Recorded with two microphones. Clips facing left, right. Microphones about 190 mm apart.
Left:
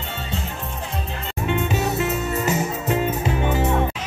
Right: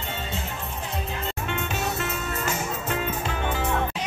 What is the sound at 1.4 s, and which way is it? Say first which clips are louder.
Music: left 9 dB; 5° left (ahead or behind).